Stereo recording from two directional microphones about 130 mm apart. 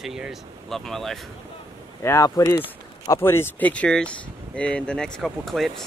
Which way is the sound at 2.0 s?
25° left (ahead or behind).